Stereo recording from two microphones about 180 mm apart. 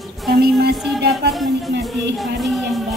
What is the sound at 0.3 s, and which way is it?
Music, 60° right (ahead or behind).